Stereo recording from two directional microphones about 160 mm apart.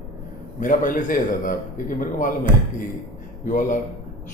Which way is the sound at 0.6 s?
55° left (ahead or behind).